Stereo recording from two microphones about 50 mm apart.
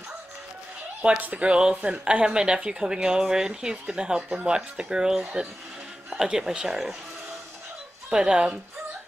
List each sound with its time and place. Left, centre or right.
1.0 s speech: right; by 7.0 s centre
8.1 s speech: centre